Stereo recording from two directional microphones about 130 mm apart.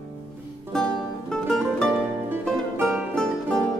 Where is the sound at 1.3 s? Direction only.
5° left (ahead or behind).